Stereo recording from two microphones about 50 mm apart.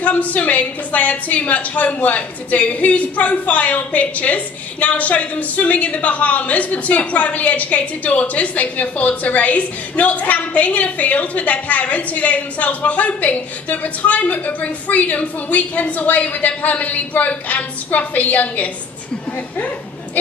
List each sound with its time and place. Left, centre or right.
0.0 s a woman's voice: left